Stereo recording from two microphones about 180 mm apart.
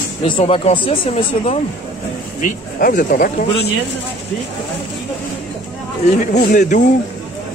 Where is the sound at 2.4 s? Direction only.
45° left (ahead or behind).